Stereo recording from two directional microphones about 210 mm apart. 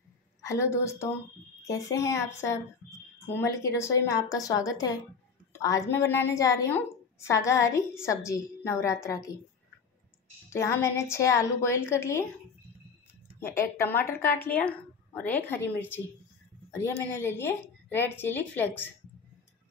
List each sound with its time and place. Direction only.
0.4 s a woman's voice: 15° left (ahead or behind)
10.5 s a woman's voice: 15° left (ahead or behind)
13.4 s a woman's voice: 10° left (ahead or behind)
16.7 s a woman's voice: 10° left (ahead or behind)